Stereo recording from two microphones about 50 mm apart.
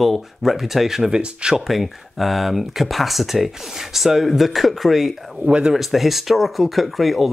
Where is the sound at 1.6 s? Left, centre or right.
Centre.